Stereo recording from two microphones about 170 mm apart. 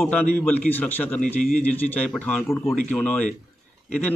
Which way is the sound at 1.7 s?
10° left (ahead or behind).